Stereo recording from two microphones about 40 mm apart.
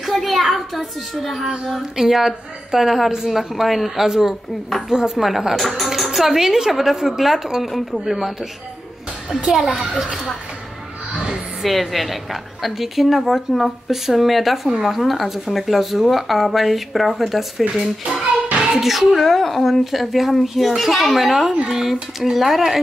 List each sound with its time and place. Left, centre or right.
0.0 s a sound: centre
1.6 s a woman's voice: centre
9.5 s speech: centre
11.1 s music: centre
11.7 s speech: centre